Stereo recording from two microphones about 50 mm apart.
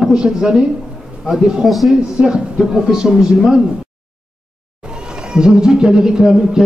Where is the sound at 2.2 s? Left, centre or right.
Centre.